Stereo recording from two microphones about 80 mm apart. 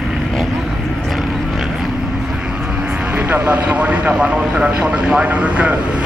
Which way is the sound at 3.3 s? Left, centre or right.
Centre.